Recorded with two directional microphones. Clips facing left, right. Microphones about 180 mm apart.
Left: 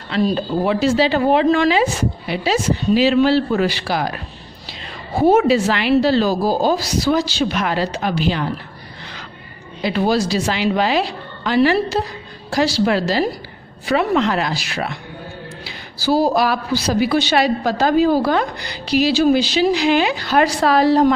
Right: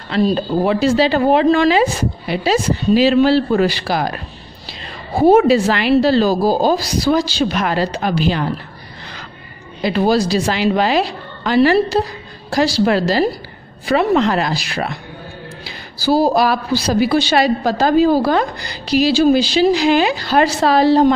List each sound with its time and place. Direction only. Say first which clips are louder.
0.1 s a woman's voice: right 2 dB; 35° right (ahead or behind)
5.4 s a woman's voice: right 2 dB; 40° right (ahead or behind)
9.8 s a woman's voice: right 3 dB; 40° right (ahead or behind)
16.3 s a woman's voice: right 2 dB; 35° right (ahead or behind)